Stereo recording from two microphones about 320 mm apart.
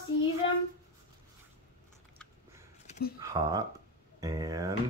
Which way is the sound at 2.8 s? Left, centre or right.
Left.